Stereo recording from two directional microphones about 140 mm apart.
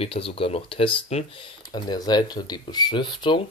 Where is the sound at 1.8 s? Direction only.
30° left (ahead or behind).